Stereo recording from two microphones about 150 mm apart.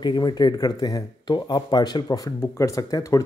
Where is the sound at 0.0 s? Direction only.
30° left (ahead or behind).